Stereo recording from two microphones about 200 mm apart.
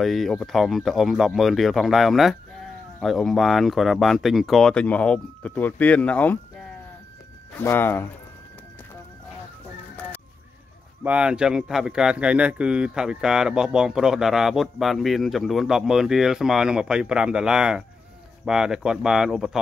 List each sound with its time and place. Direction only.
0.0 s speech: centre (ahead or behind)
7.5 s speech: 10° left (ahead or behind)
11.1 s speech: 5° right (ahead or behind)